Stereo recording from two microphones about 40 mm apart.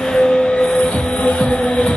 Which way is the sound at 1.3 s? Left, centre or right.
Left.